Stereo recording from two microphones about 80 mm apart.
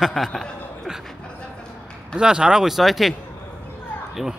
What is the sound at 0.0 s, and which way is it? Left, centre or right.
Chuckle, centre.